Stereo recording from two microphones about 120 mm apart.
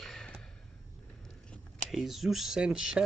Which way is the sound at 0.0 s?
5° left (ahead or behind).